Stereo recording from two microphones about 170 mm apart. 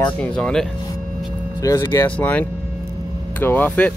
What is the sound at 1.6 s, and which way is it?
Speech, 20° left (ahead or behind).